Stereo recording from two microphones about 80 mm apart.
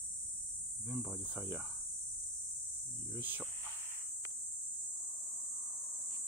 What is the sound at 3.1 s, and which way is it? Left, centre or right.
Speech, right.